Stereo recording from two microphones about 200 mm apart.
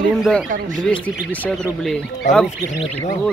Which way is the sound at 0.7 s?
5° left (ahead or behind).